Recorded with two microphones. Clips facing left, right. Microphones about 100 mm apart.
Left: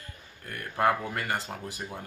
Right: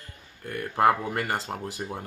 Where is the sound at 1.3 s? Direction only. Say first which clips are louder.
Right 3 dB; 30° right (ahead or behind).